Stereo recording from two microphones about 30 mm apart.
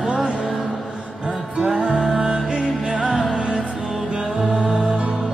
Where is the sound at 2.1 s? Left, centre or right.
Right.